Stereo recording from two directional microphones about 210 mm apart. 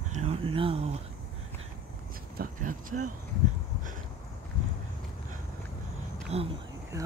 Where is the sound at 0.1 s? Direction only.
30° right (ahead or behind).